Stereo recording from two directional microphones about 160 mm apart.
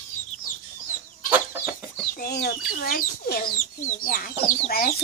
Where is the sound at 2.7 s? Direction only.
65° left (ahead or behind).